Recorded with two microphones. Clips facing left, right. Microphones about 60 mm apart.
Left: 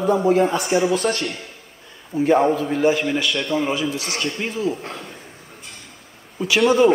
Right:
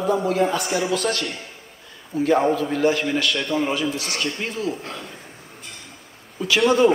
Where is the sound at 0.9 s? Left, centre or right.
Right.